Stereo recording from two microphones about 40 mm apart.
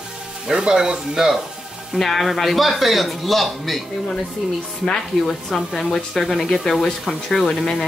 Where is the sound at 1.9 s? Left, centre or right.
Centre.